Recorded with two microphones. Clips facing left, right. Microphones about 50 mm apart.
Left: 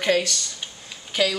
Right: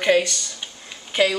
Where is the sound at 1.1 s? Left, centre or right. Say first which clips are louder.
Right 3 dB; right.